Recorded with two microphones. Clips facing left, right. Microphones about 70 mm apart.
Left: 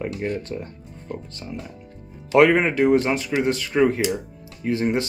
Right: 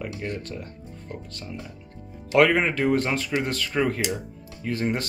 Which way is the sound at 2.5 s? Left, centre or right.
Centre.